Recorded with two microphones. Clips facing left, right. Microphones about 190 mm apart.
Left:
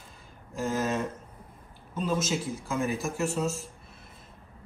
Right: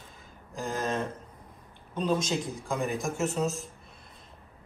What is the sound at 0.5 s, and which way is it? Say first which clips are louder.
Speech: left 2 dB; 5° left (ahead or behind).